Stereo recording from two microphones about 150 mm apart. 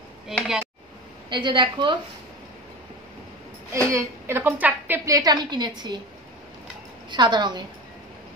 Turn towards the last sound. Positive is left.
turn(degrees=-30)  # may be behind; listen again after turning